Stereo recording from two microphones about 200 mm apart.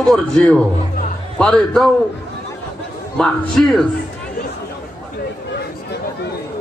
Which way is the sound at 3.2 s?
Centre (ahead or behind).